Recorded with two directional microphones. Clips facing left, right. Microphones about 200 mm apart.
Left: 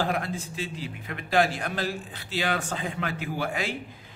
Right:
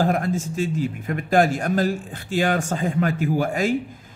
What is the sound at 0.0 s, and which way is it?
A man's voice, 45° right (ahead or behind).